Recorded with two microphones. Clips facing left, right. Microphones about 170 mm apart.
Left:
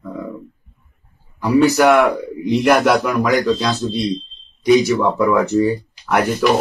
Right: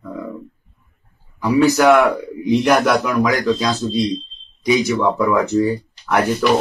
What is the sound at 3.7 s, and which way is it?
Speech, 65° left (ahead or behind).